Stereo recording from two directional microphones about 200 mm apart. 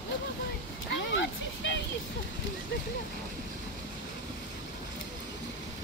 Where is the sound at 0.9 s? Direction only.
65° left (ahead or behind).